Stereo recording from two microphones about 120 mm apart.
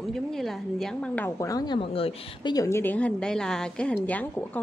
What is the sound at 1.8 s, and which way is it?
Speech, 50° left (ahead or behind).